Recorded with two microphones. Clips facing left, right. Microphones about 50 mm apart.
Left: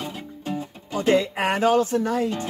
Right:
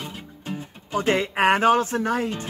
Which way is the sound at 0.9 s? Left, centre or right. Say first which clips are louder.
Left 1 dB; right.